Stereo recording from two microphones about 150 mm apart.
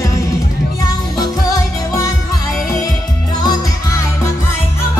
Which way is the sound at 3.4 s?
25° left (ahead or behind).